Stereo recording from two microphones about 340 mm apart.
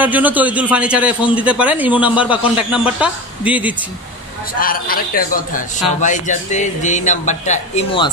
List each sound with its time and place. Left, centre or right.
0.0 s a man's voice: centre
4.6 s speech: left